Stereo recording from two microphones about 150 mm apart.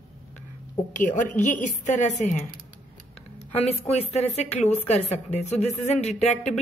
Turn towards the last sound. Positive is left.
turn(degrees=50)  # may be behind; listen again after turning